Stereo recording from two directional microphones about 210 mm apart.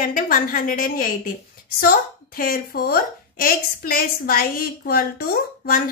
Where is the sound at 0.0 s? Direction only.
40° left (ahead or behind).